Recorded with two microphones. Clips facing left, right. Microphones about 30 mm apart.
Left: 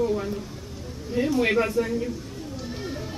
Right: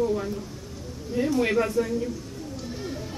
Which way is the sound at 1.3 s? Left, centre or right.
Centre.